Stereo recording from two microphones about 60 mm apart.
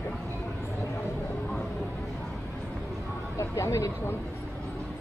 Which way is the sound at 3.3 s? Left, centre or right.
Left.